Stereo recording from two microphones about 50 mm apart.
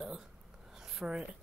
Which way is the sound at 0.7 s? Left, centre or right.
Centre.